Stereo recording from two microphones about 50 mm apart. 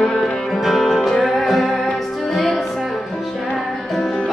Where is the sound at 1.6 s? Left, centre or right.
Left.